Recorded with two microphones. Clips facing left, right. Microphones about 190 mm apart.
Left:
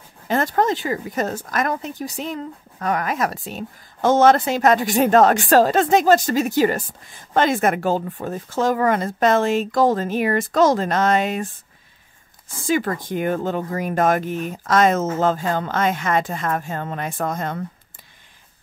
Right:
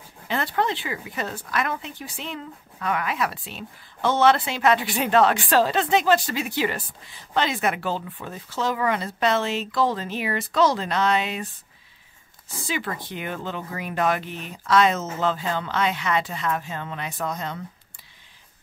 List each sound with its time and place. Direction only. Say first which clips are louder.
0.3 s speech: left 6 dB; 45° left (ahead or behind)
12.4 s speech: left 8 dB; 45° left (ahead or behind)